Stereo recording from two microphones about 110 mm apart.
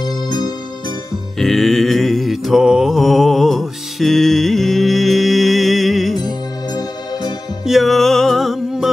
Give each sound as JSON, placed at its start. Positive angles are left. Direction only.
{"t": 0.0, "sound": "music", "side_deg": 40}
{"t": 1.4, "sound": "mantra", "side_deg": 5}
{"t": 6.7, "sound": "music", "side_deg": 35}
{"t": 7.6, "sound": "music", "side_deg": 0}